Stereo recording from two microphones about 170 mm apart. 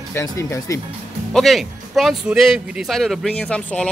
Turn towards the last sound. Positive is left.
turn(degrees=5)  # may be behind; listen again after turning